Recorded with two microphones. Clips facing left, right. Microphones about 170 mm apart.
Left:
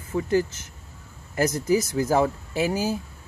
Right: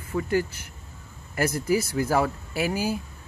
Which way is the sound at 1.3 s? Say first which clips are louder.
Left 2 dB; 20° left (ahead or behind).